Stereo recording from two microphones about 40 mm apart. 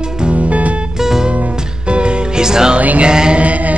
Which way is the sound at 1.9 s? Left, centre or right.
Right.